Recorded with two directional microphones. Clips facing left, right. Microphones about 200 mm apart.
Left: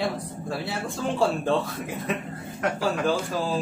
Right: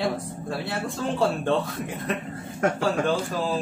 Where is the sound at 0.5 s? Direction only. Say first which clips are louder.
Right 1 dB; centre (ahead or behind).